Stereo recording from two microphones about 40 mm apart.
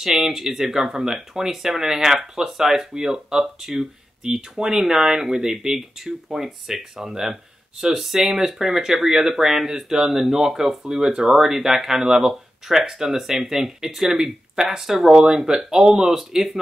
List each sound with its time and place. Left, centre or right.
0.0 s speech: centre
15.1 s speech: right